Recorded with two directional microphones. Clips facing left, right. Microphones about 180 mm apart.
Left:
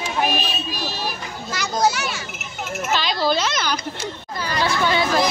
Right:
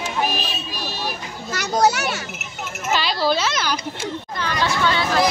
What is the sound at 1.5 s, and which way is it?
Speech, 65° right (ahead or behind).